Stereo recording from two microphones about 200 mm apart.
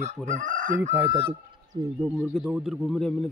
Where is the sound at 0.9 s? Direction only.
10° right (ahead or behind).